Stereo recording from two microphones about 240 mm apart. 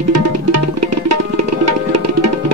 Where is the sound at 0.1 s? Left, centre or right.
Right.